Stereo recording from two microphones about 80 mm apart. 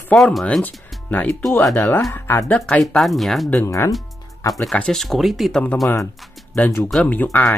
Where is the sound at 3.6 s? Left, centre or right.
Left.